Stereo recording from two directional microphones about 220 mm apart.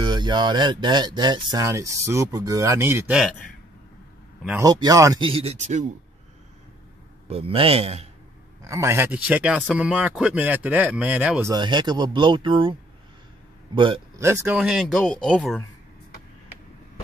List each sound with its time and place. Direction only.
0.0 s speech: 20° right (ahead or behind); by 3.3 s 5° right (ahead or behind)
4.6 s speech: 15° right (ahead or behind); by 5.9 s 30° right (ahead or behind)
7.2 s speech: 25° right (ahead or behind)
8.6 s speech: 15° right (ahead or behind)
11.5 s speech: 20° right (ahead or behind)
13.7 s speech: 25° right (ahead or behind)
14.2 s speech: 10° right (ahead or behind); by 15.6 s 5° left (ahead or behind)